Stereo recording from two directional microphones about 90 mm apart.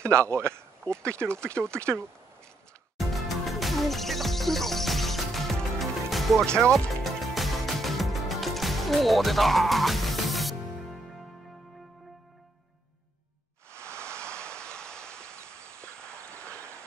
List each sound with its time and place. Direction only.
0.0 s speech: 30° right (ahead or behind)
1.2 s speech: 10° left (ahead or behind)
3.0 s music: centre (ahead or behind)
13.9 s waves: 10° left (ahead or behind)
16.1 s a sound: 30° right (ahead or behind)
16.5 s clip-clop: 30° right (ahead or behind)